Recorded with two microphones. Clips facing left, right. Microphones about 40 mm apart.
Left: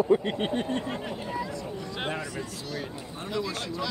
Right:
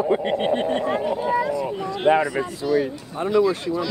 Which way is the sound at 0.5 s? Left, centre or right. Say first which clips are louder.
Right 7 dB; right.